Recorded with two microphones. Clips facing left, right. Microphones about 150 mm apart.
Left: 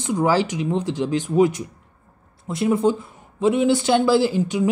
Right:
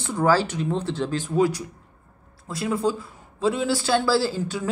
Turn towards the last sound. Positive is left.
turn(degrees=15)  # may be behind; listen again after turning